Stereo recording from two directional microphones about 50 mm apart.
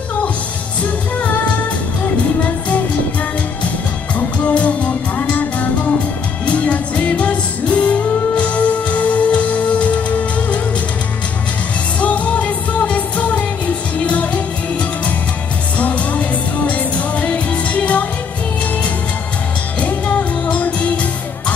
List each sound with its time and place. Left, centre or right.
1.2 s music: left
4.2 s music: left
12.0 s music: left
15.8 s music: left
19.8 s music: left